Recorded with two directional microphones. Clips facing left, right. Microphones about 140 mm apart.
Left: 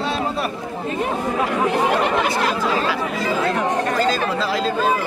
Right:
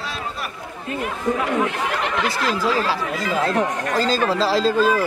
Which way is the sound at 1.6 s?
30° left (ahead or behind).